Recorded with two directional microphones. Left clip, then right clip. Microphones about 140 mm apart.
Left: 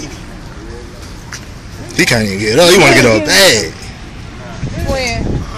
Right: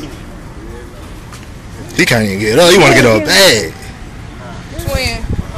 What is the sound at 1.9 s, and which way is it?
Speech, 5° right (ahead or behind).